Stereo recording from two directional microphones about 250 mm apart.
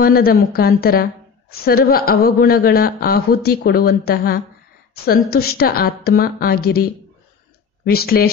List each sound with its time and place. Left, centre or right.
0.0 s a woman's voice: left